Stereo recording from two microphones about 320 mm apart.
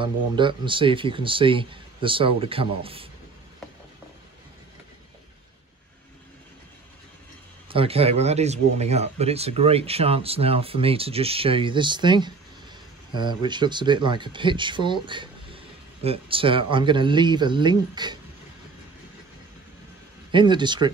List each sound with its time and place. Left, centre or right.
0.0 s speech: centre
7.7 s speech: centre
20.2 s speech: centre